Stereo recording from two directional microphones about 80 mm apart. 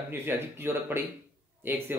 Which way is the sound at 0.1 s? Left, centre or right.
Right.